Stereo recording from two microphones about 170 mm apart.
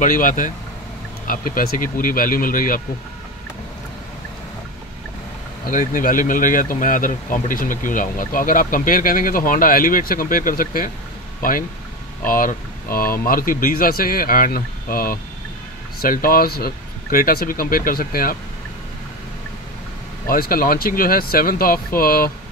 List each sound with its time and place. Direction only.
0.0 s speech: 50° left (ahead or behind)
5.7 s speech: 50° left (ahead or behind)
12.3 s speech: 55° left (ahead or behind)
20.2 s speech: 60° left (ahead or behind)